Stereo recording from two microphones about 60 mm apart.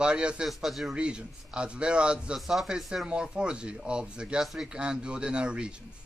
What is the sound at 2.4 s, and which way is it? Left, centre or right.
Speech, centre.